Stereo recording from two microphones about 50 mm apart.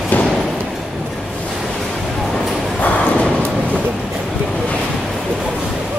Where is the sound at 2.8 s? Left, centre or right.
Left.